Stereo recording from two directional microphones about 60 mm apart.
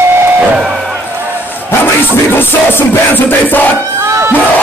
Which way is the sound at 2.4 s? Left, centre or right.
Left.